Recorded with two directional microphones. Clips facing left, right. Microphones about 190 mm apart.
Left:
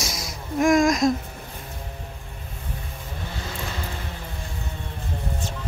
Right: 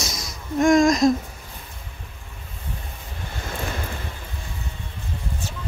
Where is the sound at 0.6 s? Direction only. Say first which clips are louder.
Right 2 dB; 5° left (ahead or behind).